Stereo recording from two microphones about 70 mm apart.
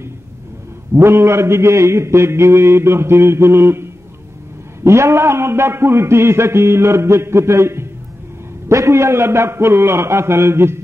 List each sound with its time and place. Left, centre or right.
0.9 s a man's voice: right